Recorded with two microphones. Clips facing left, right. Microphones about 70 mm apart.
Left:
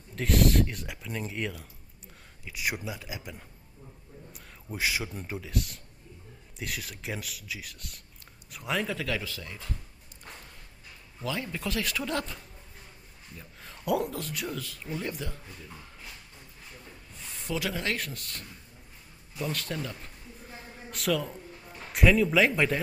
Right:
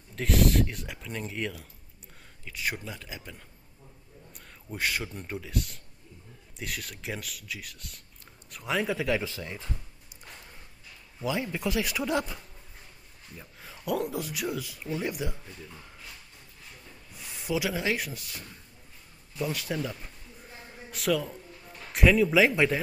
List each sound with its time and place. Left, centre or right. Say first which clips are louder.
0.1 s speech: even; centre
8.8 s speech: right 4 dB; centre
11.1 s speech: right 3 dB; centre
13.4 s speech: even; centre
17.1 s a man's voice: right 3 dB; centre